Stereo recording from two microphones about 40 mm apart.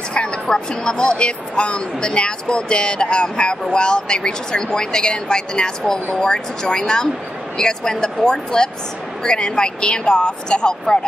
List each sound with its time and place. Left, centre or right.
0.1 s speech: left